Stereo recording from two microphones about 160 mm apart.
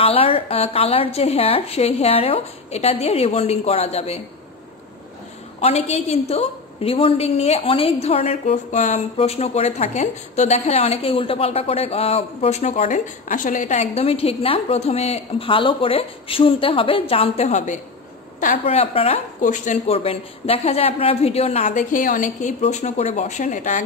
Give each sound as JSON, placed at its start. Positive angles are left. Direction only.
{"t": 0.0, "sound": "a woman's voice", "side_deg": 35}
{"t": 5.6, "sound": "a woman's voice", "side_deg": 40}
{"t": 19.4, "sound": "a woman's voice", "side_deg": 50}